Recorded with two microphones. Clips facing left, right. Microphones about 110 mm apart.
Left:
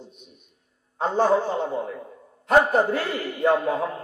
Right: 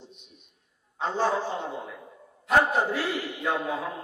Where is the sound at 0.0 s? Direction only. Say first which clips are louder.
Left 4 dB; 50° left (ahead or behind).